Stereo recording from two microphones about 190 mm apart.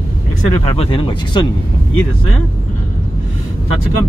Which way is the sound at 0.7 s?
30° left (ahead or behind).